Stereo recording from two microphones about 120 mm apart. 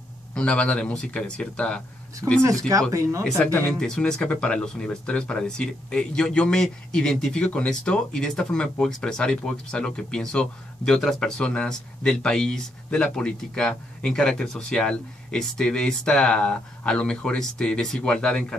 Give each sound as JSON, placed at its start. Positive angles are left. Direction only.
{"t": 0.3, "sound": "speech", "side_deg": 10}
{"t": 2.2, "sound": "speech", "side_deg": -15}
{"t": 3.8, "sound": "speech", "side_deg": 5}